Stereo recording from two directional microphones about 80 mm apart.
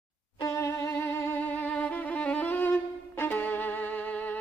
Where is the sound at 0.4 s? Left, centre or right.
Left.